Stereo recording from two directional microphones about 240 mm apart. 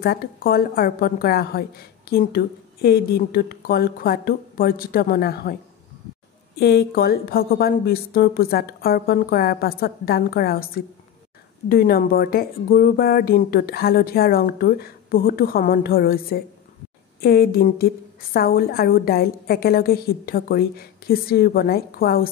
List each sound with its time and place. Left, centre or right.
0.0 s a woman's voice: left
6.6 s a woman's voice: left